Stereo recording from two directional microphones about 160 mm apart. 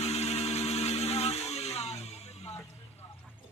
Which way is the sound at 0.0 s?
40° left (ahead or behind).